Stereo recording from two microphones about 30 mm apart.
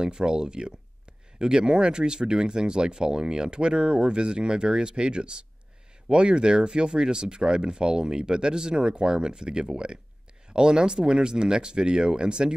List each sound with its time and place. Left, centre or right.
0.0 s speech: right